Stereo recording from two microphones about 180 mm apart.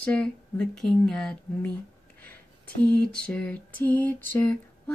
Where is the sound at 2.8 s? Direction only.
5° left (ahead or behind).